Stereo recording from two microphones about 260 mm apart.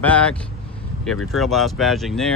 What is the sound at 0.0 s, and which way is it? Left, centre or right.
Speech, centre.